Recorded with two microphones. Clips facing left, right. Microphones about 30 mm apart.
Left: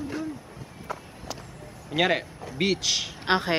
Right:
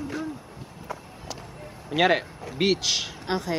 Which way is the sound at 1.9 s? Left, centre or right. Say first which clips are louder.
Right 2 dB; centre.